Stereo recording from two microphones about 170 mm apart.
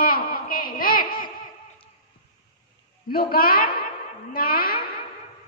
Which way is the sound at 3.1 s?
60° left (ahead or behind).